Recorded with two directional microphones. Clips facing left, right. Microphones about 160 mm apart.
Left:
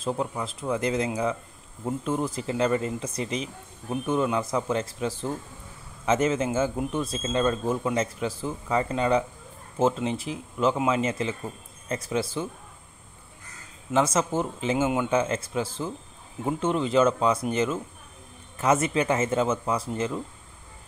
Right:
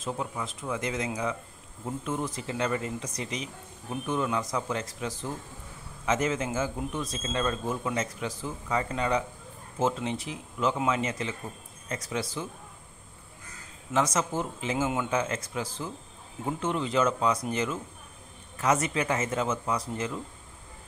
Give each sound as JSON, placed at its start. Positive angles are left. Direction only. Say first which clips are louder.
{"t": 0.0, "sound": "a man's voice", "louder": "left 5 dB", "side_deg": 30}
{"t": 13.9, "sound": "a man's voice", "louder": "left 4 dB", "side_deg": 25}